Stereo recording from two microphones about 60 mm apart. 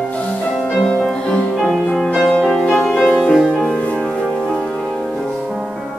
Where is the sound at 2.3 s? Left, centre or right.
Centre.